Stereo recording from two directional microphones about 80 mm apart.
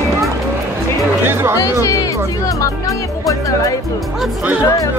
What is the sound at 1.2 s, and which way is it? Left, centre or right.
Speech, right.